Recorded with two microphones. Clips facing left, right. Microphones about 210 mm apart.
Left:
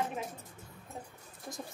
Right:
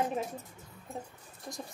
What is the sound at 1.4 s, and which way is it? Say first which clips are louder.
Speech: right 1 dB; centre (ahead or behind).